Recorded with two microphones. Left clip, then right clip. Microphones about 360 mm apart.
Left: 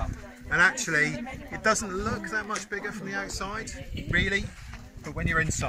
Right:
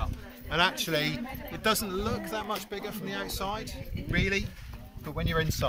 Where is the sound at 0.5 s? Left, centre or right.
Centre.